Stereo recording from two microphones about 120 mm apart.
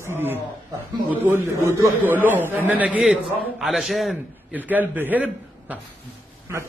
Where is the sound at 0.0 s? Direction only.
20° right (ahead or behind); by 4.2 s centre (ahead or behind).